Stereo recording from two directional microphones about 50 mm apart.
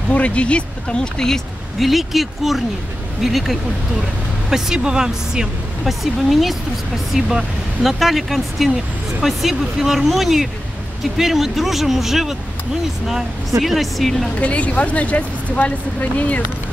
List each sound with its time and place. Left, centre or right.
0.1 s speech: left
1.8 s speech: centre
7.2 s speech: centre
13.6 s speech: centre
14.3 s speech: left